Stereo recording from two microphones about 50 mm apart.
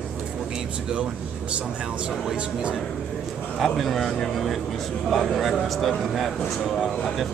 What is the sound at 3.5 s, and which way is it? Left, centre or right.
Speech, centre.